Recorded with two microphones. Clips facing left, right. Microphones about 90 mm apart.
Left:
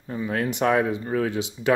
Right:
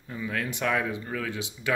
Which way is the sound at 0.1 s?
35° left (ahead or behind).